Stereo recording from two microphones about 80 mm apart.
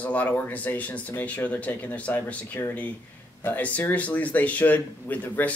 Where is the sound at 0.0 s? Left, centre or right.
Centre.